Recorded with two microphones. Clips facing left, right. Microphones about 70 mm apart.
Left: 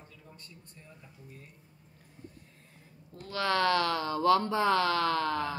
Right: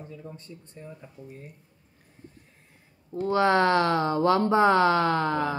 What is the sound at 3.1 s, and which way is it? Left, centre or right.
Speech, right.